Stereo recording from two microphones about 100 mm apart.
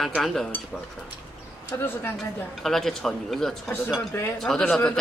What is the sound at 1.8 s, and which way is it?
Speech, 25° left (ahead or behind).